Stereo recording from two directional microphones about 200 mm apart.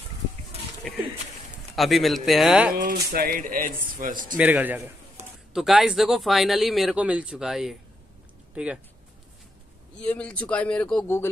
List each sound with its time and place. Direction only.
1.8 s a man's voice: centre (ahead or behind)
2.7 s speech: 45° right (ahead or behind)
4.4 s a man's voice: 10° right (ahead or behind)
10.0 s a man's voice: 5° left (ahead or behind)